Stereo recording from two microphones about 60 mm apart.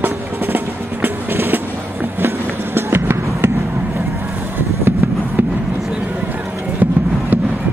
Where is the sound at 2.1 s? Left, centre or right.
Right.